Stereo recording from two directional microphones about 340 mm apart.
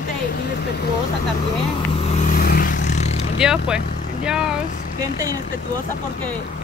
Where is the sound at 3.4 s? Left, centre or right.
Centre.